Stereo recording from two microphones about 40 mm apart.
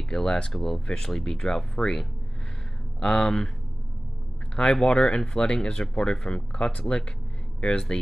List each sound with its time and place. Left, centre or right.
0.1 s speech: centre
4.6 s speech: centre